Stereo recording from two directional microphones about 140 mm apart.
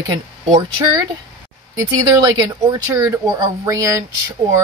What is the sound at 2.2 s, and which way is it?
Speech, 25° right (ahead or behind).